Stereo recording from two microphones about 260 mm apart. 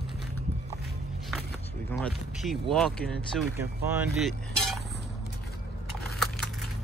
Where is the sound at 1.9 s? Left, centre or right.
Centre.